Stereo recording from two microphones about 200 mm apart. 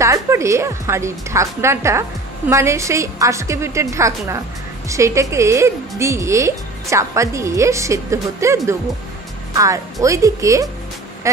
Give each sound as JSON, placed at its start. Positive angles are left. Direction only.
{"t": 0.0, "sound": "a woman's voice", "side_deg": -15}